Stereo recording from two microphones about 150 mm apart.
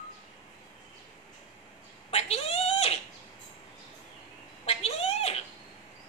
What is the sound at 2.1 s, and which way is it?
Cat, 45° left (ahead or behind).